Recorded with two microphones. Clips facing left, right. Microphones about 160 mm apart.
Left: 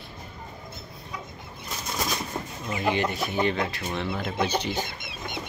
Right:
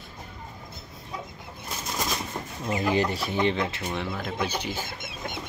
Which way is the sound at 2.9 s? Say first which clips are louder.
Even; 35° right (ahead or behind).